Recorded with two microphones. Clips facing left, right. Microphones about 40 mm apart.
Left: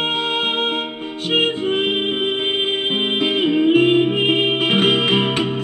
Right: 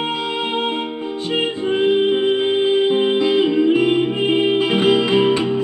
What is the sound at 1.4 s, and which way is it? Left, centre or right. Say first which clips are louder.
Music: left 1 dB; left.